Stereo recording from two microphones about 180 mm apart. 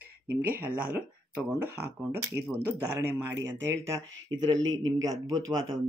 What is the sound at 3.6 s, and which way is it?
Speech, 15° right (ahead or behind).